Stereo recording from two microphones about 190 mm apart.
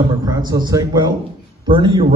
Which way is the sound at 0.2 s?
20° right (ahead or behind).